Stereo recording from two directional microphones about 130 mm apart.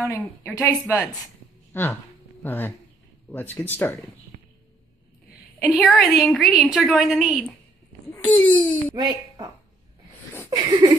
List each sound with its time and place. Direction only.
0.0 s a woman's voice: 20° left (ahead or behind)
5.6 s a woman's voice: 5° right (ahead or behind)
8.1 s speech: 10° left (ahead or behind)
8.9 s a woman's voice: 35° right (ahead or behind)
10.5 s a sound: 30° right (ahead or behind)